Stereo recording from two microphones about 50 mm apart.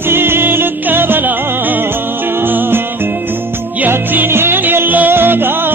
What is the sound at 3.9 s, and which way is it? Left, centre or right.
Music, right.